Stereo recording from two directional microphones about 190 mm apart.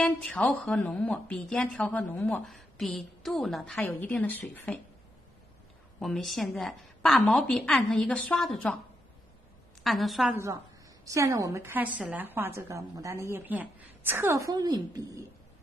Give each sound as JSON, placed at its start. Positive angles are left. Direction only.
{"t": 0.0, "sound": "a woman's voice", "side_deg": 5}
{"t": 5.9, "sound": "a woman's voice", "side_deg": 0}
{"t": 9.8, "sound": "a woman's voice", "side_deg": 0}
{"t": 10.3, "sound": "a woman's voice", "side_deg": -15}